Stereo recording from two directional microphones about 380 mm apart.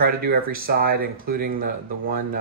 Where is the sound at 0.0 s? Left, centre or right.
Right.